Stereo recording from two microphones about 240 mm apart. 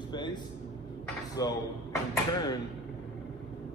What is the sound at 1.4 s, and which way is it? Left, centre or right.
A man's voice, centre.